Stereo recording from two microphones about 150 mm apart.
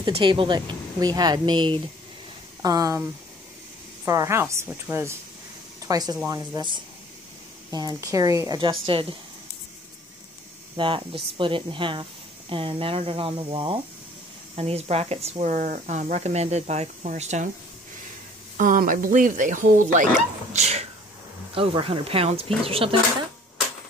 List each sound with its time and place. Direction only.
0.0 s a woman's voice: 30° right (ahead or behind)
4.0 s a woman's voice: 20° right (ahead or behind)
8.5 s speech: 35° right (ahead or behind)
10.8 s speech: 35° right (ahead or behind); by 17.5 s 55° right (ahead or behind)
18.6 s speech: 65° right (ahead or behind); by 22.9 s 40° right (ahead or behind)